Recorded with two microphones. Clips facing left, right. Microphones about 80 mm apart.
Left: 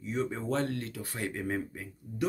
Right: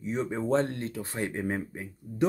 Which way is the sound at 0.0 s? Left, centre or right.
Right.